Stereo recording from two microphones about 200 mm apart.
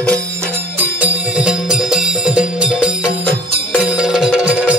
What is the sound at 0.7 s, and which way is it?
Music, 5° right (ahead or behind).